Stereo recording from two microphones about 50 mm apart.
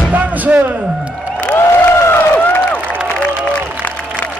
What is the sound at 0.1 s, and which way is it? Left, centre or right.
Slam, right.